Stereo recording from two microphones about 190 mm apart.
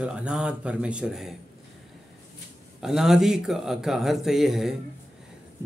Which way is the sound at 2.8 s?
Centre (ahead or behind).